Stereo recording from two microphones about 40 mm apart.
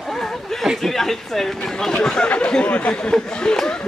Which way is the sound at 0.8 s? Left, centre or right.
Centre.